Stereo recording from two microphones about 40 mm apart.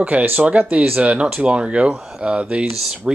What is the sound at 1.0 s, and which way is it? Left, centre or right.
Speech, right.